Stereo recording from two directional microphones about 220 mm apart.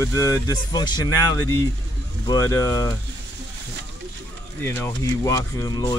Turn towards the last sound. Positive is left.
turn(degrees=15)  # may be behind; listen again after turning